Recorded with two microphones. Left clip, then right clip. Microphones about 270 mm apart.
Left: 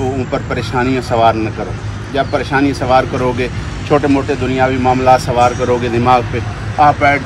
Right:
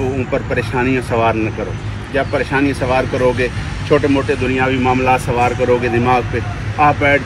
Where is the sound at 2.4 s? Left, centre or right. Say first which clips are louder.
Left 2 dB; centre.